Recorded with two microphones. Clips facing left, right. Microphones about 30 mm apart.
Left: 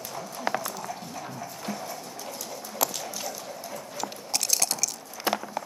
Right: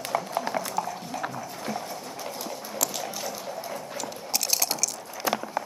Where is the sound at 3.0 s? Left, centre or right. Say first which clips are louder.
Right 2 dB; centre.